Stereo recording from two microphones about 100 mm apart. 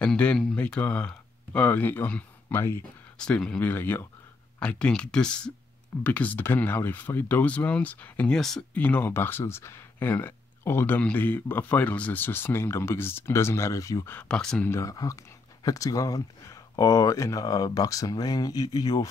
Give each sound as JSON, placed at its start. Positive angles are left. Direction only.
{"t": 0.0, "sound": "speech", "side_deg": 10}
{"t": 8.4, "sound": "speech", "side_deg": 5}
{"t": 8.7, "sound": "speech", "side_deg": 15}
{"t": 14.1, "sound": "speech", "side_deg": 10}
{"t": 14.7, "sound": "speech", "side_deg": 35}